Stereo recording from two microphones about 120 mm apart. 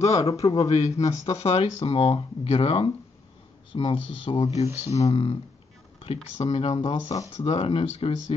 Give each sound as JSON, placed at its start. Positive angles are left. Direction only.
{"t": 0.0, "sound": "speech", "side_deg": 30}
{"t": 0.7, "sound": "a man's voice", "side_deg": 75}
{"t": 0.9, "sound": "speech", "side_deg": 30}
{"t": 1.3, "sound": "speech", "side_deg": 60}